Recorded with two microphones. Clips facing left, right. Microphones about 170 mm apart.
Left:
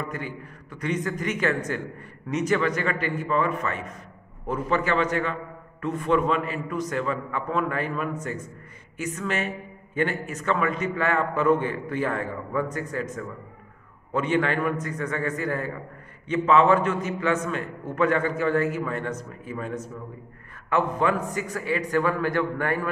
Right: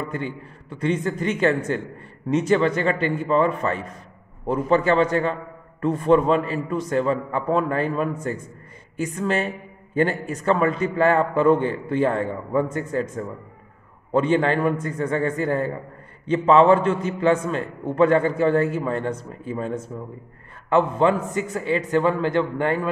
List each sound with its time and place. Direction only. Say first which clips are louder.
0.0 s a man's voice: right 4 dB; 30° right (ahead or behind)